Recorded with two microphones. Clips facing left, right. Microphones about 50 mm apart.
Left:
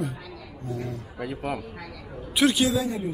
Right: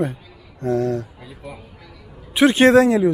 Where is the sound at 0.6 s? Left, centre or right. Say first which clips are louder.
Right 14 dB; right.